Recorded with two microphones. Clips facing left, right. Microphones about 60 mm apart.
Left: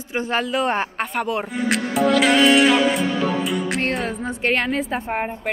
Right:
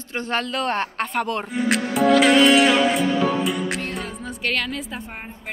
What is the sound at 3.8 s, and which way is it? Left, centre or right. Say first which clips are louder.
Music: left 6 dB; left.